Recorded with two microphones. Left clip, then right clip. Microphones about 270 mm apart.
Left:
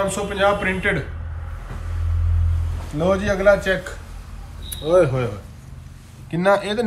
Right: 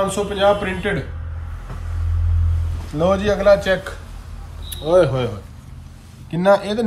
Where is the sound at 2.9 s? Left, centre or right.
Centre.